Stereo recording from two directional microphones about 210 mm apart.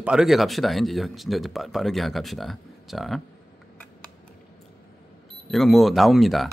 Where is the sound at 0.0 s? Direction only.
5° right (ahead or behind).